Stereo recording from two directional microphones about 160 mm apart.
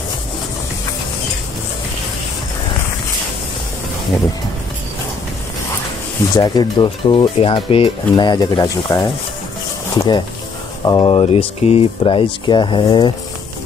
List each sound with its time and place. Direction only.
6.3 s speech: 25° left (ahead or behind)